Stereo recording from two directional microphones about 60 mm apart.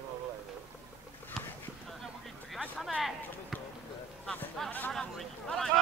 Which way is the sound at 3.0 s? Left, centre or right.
Centre.